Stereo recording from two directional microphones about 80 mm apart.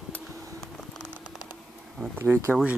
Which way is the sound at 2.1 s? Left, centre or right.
Right.